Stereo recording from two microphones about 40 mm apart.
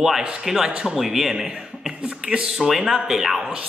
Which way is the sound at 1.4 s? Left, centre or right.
Right.